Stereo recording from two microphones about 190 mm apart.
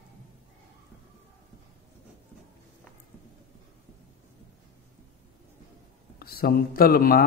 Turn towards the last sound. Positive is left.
turn(degrees=50)  # may be behind; listen again after turning